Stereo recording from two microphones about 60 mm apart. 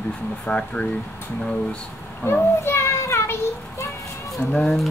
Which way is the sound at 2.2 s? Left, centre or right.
Left.